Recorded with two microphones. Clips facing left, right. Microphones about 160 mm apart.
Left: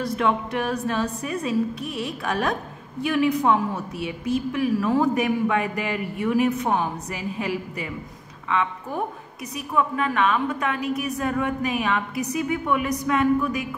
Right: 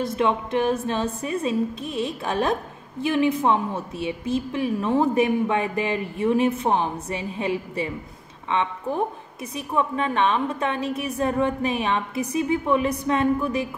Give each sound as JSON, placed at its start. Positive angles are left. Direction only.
{"t": 0.0, "sound": "a woman's voice", "side_deg": -25}